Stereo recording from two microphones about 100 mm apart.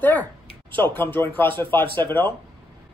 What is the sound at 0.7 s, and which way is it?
Speech, 20° left (ahead or behind).